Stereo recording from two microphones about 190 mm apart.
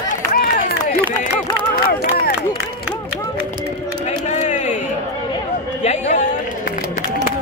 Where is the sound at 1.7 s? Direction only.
50° left (ahead or behind).